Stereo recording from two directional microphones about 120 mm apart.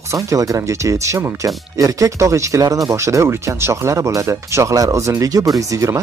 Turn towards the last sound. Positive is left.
turn(degrees=-25)  # may be behind; listen again after turning